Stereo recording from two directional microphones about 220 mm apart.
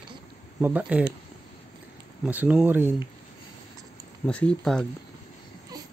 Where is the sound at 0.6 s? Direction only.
10° right (ahead or behind).